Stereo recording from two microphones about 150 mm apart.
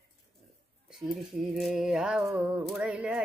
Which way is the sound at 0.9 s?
Centre (ahead or behind).